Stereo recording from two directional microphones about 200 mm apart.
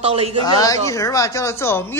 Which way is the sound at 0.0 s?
30° right (ahead or behind).